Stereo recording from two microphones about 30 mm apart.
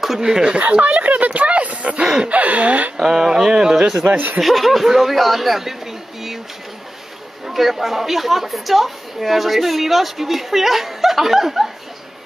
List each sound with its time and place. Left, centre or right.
0.0 s speech: centre
0.6 s speech: right
3.0 s speech: centre
4.4 s a woman's voice: centre
7.4 s a woman's voice: centre